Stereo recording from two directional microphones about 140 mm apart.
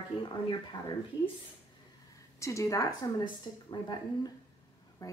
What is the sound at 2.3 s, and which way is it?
Speech, 20° left (ahead or behind).